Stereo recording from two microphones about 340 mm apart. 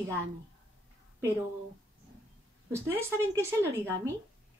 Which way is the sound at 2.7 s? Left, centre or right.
Centre.